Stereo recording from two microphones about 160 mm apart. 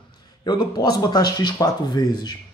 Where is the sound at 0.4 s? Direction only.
25° left (ahead or behind).